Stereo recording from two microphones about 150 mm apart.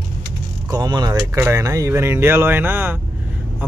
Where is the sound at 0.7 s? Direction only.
25° right (ahead or behind).